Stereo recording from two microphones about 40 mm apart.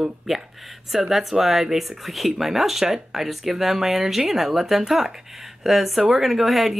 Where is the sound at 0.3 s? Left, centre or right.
Centre.